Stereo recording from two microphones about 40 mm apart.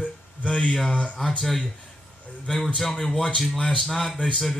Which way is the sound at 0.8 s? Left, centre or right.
Left.